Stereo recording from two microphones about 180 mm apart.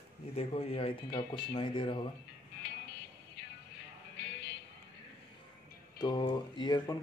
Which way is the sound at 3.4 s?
70° left (ahead or behind).